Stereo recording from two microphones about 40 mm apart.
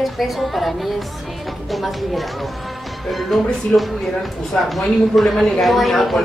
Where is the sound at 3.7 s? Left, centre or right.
Centre.